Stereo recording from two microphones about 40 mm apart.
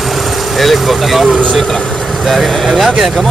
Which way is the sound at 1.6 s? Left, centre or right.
Centre.